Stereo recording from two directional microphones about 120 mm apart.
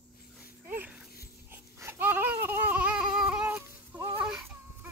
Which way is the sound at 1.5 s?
20° right (ahead or behind).